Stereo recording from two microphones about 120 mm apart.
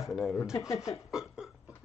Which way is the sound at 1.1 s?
5° right (ahead or behind).